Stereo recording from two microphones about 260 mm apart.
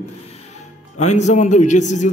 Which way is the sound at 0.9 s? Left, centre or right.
Left.